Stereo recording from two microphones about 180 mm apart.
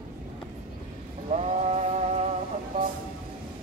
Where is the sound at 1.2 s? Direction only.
40° right (ahead or behind).